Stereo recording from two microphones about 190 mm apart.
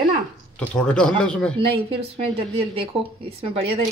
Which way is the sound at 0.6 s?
5° left (ahead or behind).